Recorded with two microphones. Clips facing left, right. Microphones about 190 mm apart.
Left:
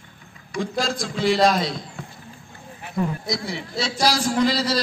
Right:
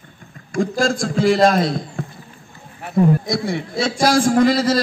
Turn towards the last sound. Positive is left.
turn(degrees=-50)  # may be behind; listen again after turning